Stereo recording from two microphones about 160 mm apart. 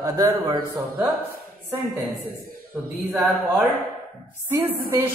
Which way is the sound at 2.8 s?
5° right (ahead or behind).